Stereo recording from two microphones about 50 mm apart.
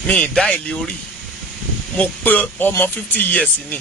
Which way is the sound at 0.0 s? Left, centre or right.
Centre.